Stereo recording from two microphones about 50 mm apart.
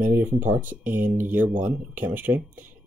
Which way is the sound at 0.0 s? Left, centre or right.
Right.